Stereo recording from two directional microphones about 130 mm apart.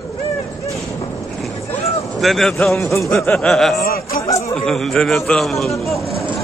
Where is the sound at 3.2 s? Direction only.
15° left (ahead or behind).